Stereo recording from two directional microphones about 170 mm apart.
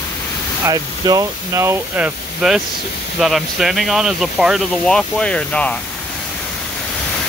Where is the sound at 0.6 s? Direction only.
20° right (ahead or behind); by 5.7 s 5° left (ahead or behind).